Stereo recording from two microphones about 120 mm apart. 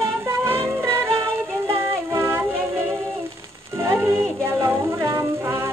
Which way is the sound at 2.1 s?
20° right (ahead or behind).